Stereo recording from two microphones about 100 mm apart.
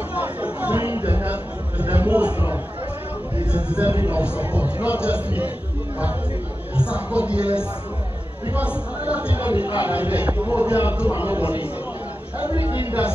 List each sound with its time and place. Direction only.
0.1 s chatter: 15° right (ahead or behind)
3.5 s speech: 15° right (ahead or behind)
6.7 s speech: 10° right (ahead or behind)
9.6 s speech: 50° left (ahead or behind)
9.8 s a man's voice: 15° right (ahead or behind)